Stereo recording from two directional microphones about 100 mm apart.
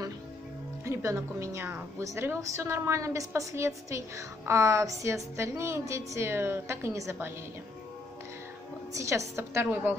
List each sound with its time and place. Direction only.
0.8 s a woman's voice: 30° right (ahead or behind)
8.9 s a woman's voice: 30° right (ahead or behind)